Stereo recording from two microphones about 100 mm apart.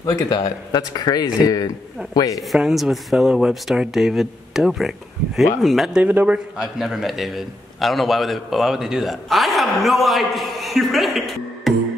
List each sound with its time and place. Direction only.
0.0 s speech: 40° left (ahead or behind)
2.5 s a man's voice: centre (ahead or behind)
6.0 s a man's voice: 15° right (ahead or behind)